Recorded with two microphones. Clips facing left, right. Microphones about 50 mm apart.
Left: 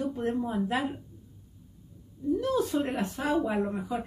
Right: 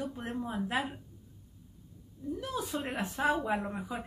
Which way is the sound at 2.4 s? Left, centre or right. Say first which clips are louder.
Left 7 dB; centre.